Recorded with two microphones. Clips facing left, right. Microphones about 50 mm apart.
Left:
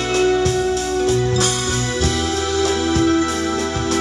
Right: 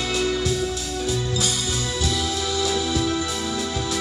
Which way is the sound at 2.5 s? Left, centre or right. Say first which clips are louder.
Left 6 dB; left.